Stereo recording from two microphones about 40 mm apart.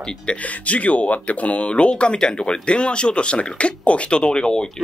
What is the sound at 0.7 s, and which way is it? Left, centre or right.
Speech, left.